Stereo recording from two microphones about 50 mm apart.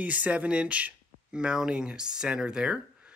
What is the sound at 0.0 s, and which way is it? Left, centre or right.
Speech, right.